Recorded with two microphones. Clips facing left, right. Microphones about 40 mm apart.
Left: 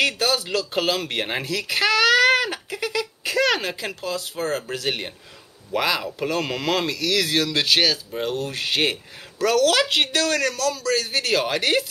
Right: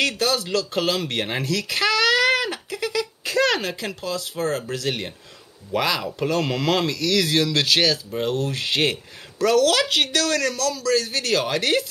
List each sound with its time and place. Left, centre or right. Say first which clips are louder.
0.0 s speech: even; centre
2.0 s a sound: left 2 dB; centre
4.4 s speech: right 2 dB; left
9.8 s speech: even; left